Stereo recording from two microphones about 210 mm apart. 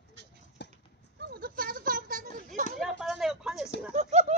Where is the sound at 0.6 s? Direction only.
55° left (ahead or behind).